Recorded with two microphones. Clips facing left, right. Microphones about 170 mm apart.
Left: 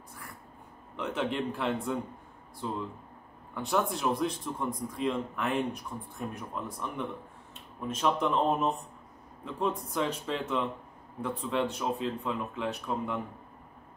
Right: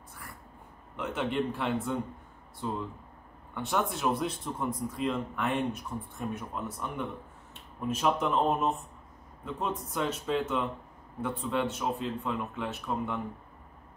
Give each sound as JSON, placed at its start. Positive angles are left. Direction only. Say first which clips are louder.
{"t": 0.9, "sound": "speech", "louder": "right 1 dB", "side_deg": 0}
{"t": 3.5, "sound": "speech", "louder": "left 1 dB", "side_deg": 0}